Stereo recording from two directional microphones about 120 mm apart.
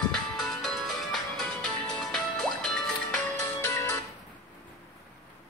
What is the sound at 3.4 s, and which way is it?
Music, 20° left (ahead or behind).